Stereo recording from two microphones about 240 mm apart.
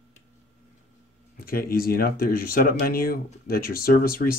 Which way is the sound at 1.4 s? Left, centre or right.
Left.